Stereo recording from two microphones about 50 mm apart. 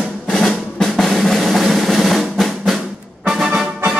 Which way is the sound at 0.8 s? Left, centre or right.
Centre.